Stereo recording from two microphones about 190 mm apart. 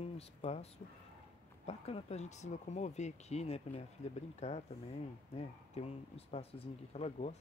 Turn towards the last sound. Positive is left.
turn(degrees=35)  # may be behind; listen again after turning